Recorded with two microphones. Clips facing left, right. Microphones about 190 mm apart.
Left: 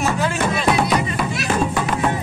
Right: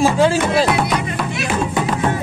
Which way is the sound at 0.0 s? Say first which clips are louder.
Right 6 dB; 30° right (ahead or behind).